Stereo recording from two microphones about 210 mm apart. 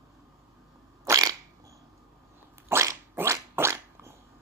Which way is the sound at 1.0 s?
15° right (ahead or behind).